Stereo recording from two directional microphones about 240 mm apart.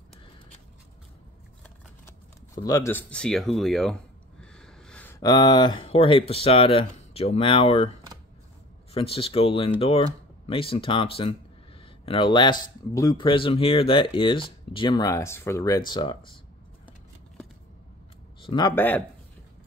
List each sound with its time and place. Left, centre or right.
2.0 s speech: centre
4.4 s a sound: centre
5.2 s a man's voice: centre
8.9 s a man's voice: left
18.4 s speech: centre